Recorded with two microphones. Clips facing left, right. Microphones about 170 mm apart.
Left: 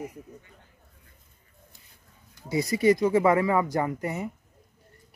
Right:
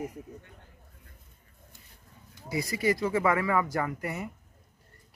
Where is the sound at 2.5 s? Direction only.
25° left (ahead or behind).